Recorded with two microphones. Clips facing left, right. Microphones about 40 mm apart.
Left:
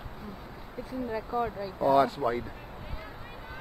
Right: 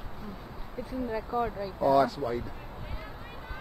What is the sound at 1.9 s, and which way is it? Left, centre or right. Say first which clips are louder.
Speech: left 1 dB; left.